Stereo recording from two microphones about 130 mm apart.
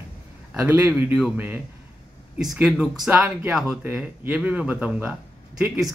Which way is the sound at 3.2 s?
5° right (ahead or behind).